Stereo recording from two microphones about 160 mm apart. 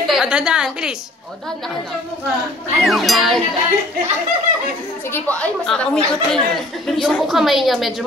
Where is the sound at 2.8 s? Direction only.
Centre (ahead or behind).